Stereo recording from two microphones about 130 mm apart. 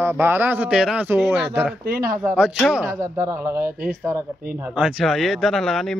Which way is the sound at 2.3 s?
5° right (ahead or behind).